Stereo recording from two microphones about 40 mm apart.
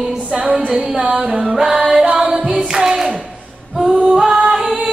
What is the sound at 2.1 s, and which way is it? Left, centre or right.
Singing, centre.